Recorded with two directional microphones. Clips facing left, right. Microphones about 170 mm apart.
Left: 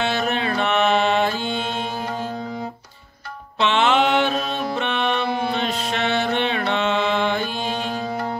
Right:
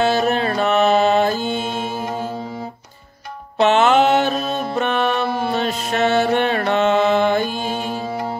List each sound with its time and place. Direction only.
0.0 s music: 40° right (ahead or behind)
3.5 s music: 45° right (ahead or behind)